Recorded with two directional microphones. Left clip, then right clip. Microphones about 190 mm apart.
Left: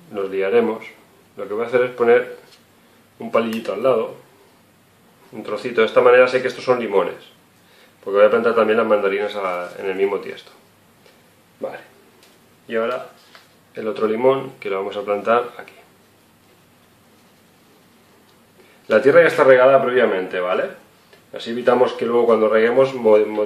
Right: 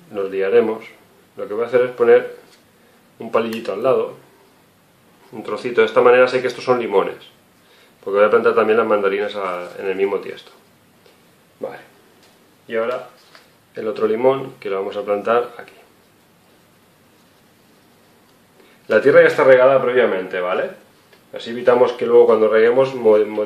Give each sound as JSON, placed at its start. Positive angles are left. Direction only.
{"t": 0.1, "sound": "speech", "side_deg": -5}
{"t": 5.3, "sound": "speech", "side_deg": -20}
{"t": 12.6, "sound": "speech", "side_deg": -5}
{"t": 18.9, "sound": "speech", "side_deg": -5}